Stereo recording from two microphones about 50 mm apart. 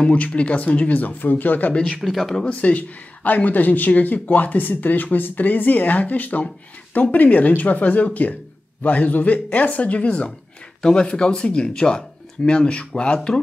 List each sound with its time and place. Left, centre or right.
0.1 s speech: left
1.7 s speech: left
2.0 s speech: centre
2.4 s speech: left